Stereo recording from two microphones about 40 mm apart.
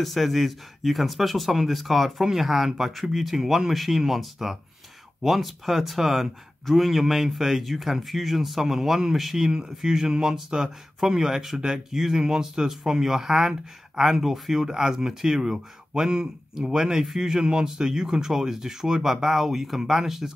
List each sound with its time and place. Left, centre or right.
0.0 s speech: centre
6.9 s speech: centre
15.9 s speech: centre